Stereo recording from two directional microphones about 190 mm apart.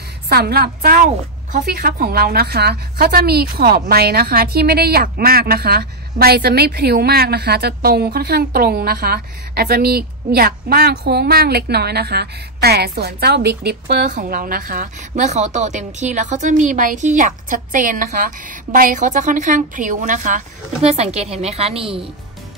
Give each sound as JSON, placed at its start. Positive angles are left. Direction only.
{"t": 0.3, "sound": "a woman's voice", "side_deg": -55}